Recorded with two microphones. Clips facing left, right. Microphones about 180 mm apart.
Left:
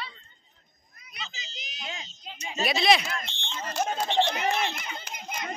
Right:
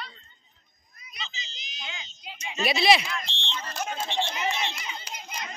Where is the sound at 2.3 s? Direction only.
35° left (ahead or behind).